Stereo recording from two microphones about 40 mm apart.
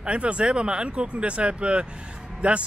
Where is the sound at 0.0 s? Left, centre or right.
Right.